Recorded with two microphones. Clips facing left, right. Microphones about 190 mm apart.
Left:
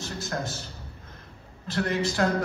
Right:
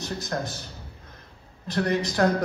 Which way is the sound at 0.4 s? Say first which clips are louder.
Right 1 dB; 15° right (ahead or behind).